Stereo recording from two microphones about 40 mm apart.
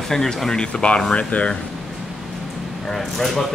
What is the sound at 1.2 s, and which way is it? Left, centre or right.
Speech, left.